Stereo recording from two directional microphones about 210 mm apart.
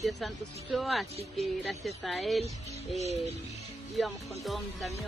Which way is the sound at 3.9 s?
Centre (ahead or behind).